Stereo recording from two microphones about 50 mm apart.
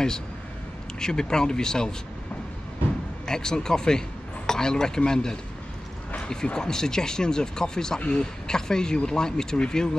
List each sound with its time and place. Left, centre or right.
0.9 s speech: centre
3.3 s speech: centre